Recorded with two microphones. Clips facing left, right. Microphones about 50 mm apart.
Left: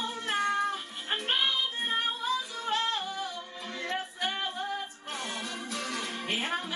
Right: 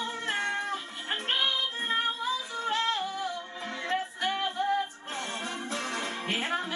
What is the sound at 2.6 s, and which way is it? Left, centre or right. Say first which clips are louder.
Music: right 5 dB; right.